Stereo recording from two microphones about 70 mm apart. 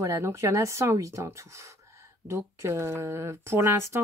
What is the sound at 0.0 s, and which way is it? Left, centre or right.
Speech, right.